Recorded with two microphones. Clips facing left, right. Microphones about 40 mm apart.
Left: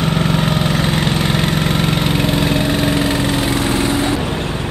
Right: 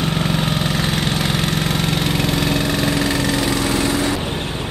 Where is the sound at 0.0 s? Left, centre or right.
Centre; by 4.2 s left.